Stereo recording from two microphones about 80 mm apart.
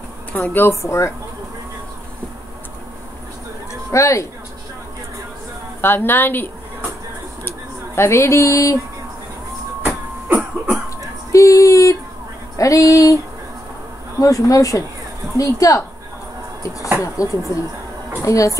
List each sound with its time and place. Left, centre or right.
0.3 s speech: left
0.7 s speech: left
3.9 s speech: left
5.8 s a woman's voice: left
9.8 s cough: right
11.3 s a sound: left
14.2 s speech: left
17.0 s speech: left